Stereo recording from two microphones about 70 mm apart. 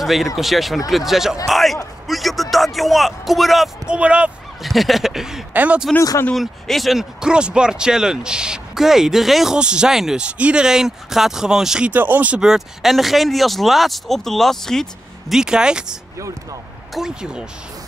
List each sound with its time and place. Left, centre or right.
0.0 s a man's voice: centre
3.8 s speech: centre
4.6 s speech: centre
5.5 s speech: right
6.3 s speech: centre
11.9 s speech: right
12.4 s speech: centre
15.3 s speech: centre